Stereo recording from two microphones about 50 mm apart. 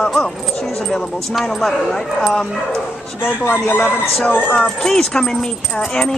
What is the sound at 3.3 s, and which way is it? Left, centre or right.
Speech, left.